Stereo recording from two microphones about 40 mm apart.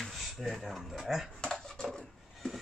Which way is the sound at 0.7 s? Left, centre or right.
Centre.